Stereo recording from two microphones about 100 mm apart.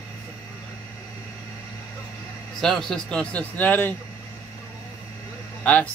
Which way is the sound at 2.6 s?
5° left (ahead or behind).